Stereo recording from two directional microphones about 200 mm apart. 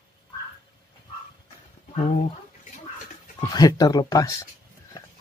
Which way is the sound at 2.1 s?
35° left (ahead or behind).